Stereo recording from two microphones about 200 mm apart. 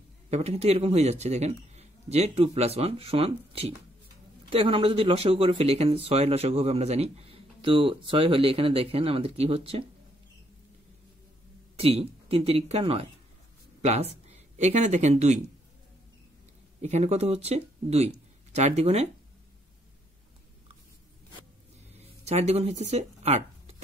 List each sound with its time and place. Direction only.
0.3 s speech: 30° right (ahead or behind)
11.8 s speech: 30° right (ahead or behind)
13.7 s a sound: 35° right (ahead or behind)
14.2 s speech: 35° right (ahead or behind)
16.8 s speech: 35° right (ahead or behind)
21.9 s a sound: 30° right (ahead or behind)